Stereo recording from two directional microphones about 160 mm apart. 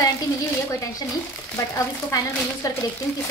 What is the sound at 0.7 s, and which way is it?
Speech, 20° left (ahead or behind).